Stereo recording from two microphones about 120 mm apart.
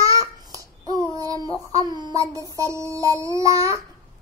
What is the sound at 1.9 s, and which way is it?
Child singing, 30° right (ahead or behind).